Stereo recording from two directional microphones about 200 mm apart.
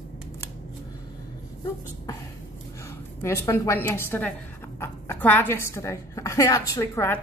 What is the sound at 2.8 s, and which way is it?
A woman's voice, 15° left (ahead or behind).